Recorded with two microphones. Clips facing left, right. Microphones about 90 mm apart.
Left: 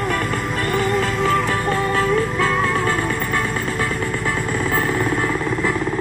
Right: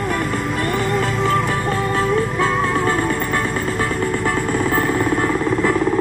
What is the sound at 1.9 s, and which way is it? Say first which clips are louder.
Music: even; 20° right (ahead or behind).